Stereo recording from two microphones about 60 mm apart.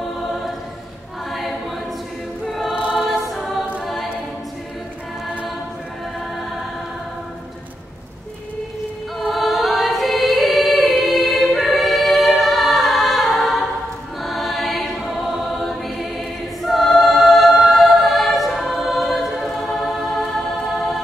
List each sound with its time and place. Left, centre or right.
2.4 s choir: centre
2.7 s choir: centre
3.1 s choir: centre
9.2 s choir: centre